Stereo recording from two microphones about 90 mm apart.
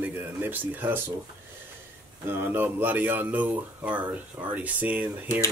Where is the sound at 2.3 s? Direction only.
25° right (ahead or behind).